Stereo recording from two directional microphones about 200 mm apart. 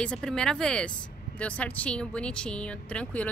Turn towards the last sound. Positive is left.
turn(degrees=5)  # may be behind; listen again after turning